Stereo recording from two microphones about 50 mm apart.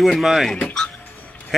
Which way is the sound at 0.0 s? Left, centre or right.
Centre.